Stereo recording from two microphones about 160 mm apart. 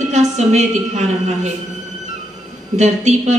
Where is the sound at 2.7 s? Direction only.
45° right (ahead or behind).